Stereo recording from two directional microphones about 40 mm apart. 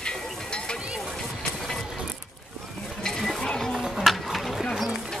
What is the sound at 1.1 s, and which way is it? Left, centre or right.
Music, centre.